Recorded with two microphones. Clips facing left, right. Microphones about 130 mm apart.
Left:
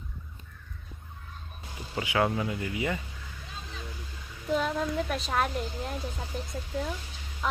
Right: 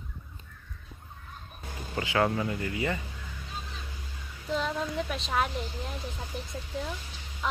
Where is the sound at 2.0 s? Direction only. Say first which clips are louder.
Even; 10° left (ahead or behind).